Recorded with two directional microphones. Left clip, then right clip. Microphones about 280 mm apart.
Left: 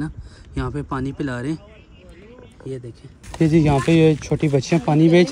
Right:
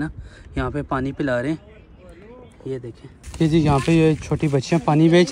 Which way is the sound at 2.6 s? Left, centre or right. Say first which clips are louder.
Right 2 dB; centre.